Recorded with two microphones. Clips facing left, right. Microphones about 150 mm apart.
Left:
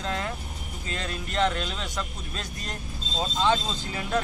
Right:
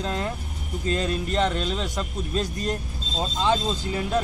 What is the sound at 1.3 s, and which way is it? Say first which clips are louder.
Speech: even; centre (ahead or behind).